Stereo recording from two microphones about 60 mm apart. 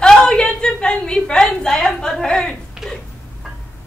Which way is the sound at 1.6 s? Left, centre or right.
Centre.